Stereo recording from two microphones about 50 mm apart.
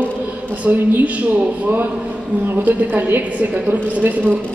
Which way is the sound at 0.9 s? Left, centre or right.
Right.